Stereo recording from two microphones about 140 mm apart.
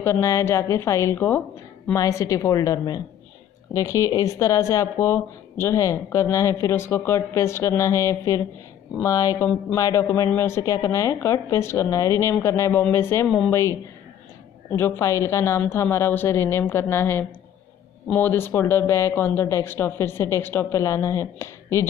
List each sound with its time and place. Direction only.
0.0 s speech: 20° left (ahead or behind)
9.4 s speech: 10° left (ahead or behind)
9.8 s speech: 25° left (ahead or behind)